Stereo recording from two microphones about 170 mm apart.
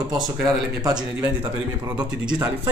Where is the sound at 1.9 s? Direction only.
5° right (ahead or behind).